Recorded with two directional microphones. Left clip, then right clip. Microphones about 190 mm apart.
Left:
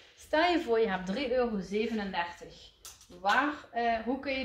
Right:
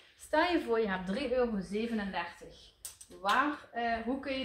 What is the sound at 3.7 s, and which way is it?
Speech, 15° left (ahead or behind).